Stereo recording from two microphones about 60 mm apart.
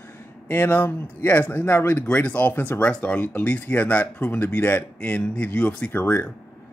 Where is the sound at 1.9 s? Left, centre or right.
Left.